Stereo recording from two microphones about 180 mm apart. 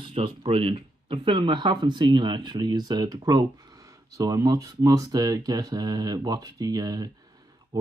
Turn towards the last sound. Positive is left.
turn(degrees=-20)  # may be behind; listen again after turning